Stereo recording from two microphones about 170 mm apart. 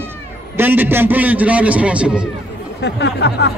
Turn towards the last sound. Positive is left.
turn(degrees=90)